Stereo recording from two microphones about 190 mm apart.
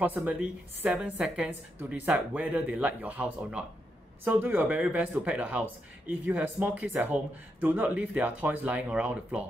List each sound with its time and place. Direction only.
0.0 s a woman's voice: 10° right (ahead or behind)